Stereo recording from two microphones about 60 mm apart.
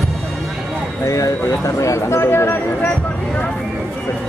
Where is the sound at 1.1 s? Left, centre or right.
Left.